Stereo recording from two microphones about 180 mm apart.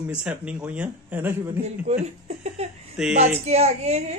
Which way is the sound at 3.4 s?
35° right (ahead or behind).